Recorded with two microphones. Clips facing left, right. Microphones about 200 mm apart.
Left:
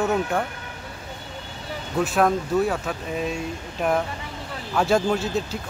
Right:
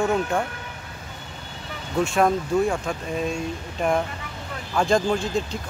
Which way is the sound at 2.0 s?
Centre (ahead or behind).